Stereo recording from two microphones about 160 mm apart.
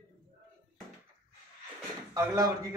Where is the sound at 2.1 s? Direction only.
20° right (ahead or behind).